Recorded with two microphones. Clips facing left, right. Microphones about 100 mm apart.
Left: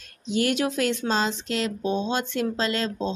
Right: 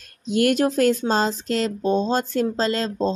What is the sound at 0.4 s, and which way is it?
Speech, 45° right (ahead or behind).